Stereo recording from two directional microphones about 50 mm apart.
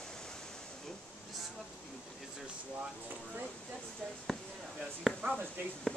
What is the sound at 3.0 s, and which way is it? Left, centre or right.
Speech, right.